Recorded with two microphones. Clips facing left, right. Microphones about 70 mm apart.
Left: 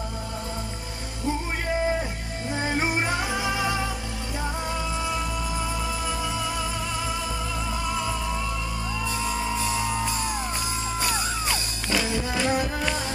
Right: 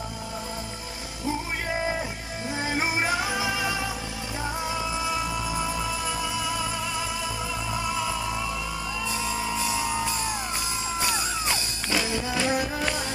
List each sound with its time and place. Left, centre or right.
2.5 s music: centre
11.5 s music: centre